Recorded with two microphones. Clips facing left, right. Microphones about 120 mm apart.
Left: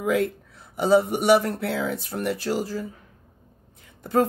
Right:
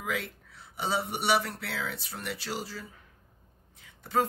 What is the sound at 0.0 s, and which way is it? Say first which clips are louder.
Speech: left 12 dB; 50° left (ahead or behind).